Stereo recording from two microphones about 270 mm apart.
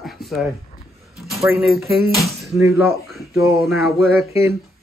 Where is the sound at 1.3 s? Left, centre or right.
Centre.